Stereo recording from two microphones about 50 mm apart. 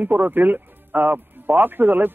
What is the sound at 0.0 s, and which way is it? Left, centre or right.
Speech, right.